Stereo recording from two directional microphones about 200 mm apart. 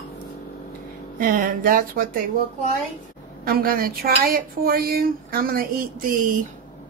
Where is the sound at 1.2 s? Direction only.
45° right (ahead or behind).